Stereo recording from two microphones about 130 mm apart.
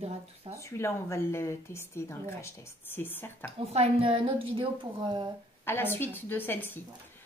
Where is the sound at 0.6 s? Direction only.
20° left (ahead or behind).